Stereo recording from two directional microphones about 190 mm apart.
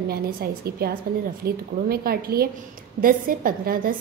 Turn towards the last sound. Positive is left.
turn(degrees=-50)  # may be behind; listen again after turning